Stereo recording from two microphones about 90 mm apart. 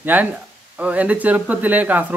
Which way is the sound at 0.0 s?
20° right (ahead or behind).